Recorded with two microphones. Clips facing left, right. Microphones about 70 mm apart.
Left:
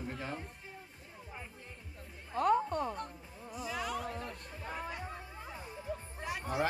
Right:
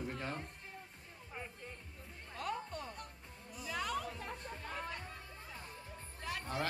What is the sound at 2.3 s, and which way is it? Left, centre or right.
Speech, left.